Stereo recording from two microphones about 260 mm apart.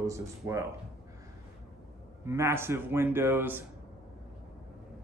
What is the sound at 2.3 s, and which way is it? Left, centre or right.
Speech, centre.